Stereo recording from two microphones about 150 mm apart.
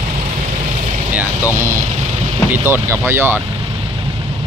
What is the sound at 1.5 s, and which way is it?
Speech, 20° right (ahead or behind).